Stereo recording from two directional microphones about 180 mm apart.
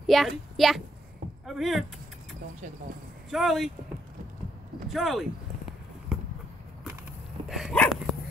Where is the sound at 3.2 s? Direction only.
Centre (ahead or behind).